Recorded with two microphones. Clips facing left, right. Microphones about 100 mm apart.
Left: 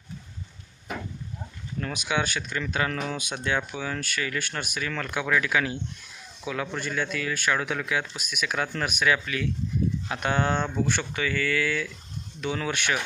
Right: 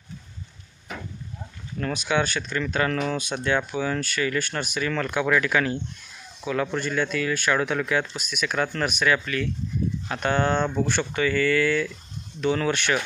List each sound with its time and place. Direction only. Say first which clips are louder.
1.8 s speech: right 4 dB; 10° left (ahead or behind)